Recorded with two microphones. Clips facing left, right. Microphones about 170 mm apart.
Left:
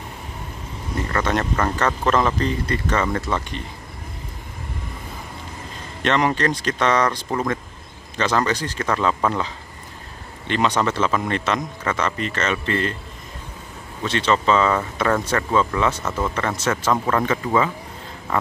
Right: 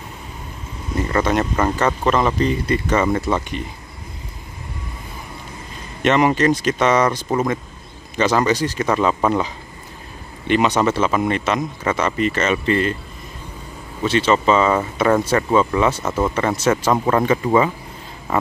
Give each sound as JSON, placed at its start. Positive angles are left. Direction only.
{"t": 1.1, "sound": "speech", "side_deg": -10}
{"t": 6.0, "sound": "speech", "side_deg": -10}
{"t": 14.0, "sound": "speech", "side_deg": -5}